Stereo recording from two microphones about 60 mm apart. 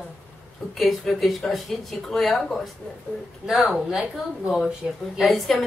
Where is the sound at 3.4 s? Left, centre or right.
Centre.